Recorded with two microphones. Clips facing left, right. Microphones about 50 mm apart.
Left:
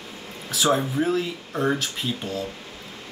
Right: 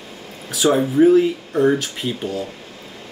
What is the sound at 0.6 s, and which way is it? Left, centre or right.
Speech, centre.